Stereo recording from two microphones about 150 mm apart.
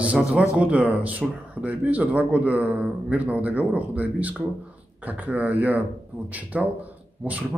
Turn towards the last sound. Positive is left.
turn(degrees=-10)  # may be behind; listen again after turning